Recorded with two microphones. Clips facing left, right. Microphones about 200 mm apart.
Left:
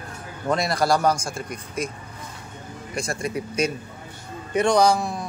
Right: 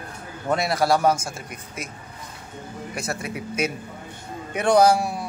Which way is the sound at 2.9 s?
5° right (ahead or behind).